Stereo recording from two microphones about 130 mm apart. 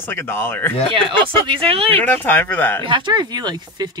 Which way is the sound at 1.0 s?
45° right (ahead or behind).